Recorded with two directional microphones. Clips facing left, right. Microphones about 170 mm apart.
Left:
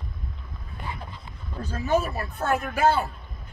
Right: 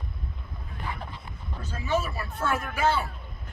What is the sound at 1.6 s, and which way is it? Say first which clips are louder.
Speech: left 4 dB; 40° left (ahead or behind).